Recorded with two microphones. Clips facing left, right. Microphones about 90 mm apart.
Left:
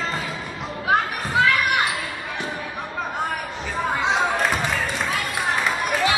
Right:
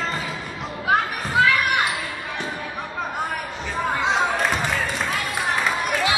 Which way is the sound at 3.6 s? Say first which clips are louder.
Even; centre (ahead or behind).